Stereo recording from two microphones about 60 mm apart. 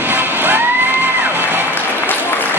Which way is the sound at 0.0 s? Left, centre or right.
Right.